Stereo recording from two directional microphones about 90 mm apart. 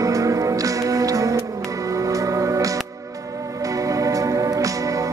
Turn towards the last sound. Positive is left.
turn(degrees=-40)  # may be behind; listen again after turning